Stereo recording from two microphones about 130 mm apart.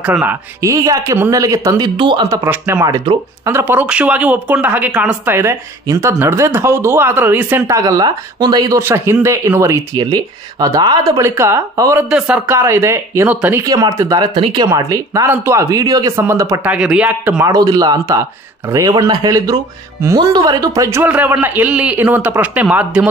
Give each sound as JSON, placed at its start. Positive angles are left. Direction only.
{"t": 0.0, "sound": "speech", "side_deg": -15}
{"t": 2.0, "sound": "speech", "side_deg": -40}
{"t": 2.2, "sound": "speech", "side_deg": -25}
{"t": 2.8, "sound": "speech", "side_deg": -30}
{"t": 3.4, "sound": "speech", "side_deg": -20}
{"t": 12.0, "sound": "speech", "side_deg": -5}
{"t": 16.6, "sound": "speech", "side_deg": -10}
{"t": 17.4, "sound": "speech", "side_deg": -30}